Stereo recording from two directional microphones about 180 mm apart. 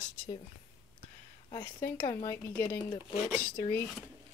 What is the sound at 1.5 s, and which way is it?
Speech, 25° left (ahead or behind).